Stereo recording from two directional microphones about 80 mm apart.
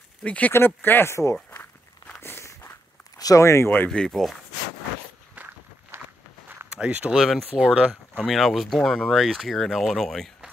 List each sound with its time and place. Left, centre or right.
0.2 s speech: centre
0.5 s speech: left
2.1 s walk: left
3.2 s a sound: left
3.4 s speech: left
3.9 s speech: centre
5.3 s walk: right
6.7 s speech: centre
7.2 s speech: centre
7.5 s speech: centre
8.2 s speech: centre